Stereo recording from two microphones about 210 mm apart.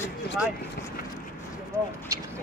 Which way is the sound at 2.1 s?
15° right (ahead or behind).